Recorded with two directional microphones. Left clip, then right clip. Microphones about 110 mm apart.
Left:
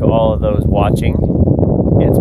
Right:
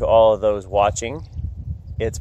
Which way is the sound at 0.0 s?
25° left (ahead or behind).